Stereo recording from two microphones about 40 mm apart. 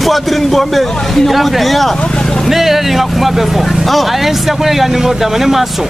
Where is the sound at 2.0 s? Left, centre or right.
Centre.